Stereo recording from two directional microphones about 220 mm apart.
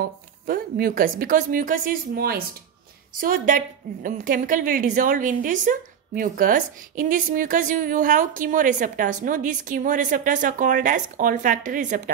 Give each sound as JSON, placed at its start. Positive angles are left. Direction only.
{"t": 0.0, "sound": "a woman's voice", "side_deg": -40}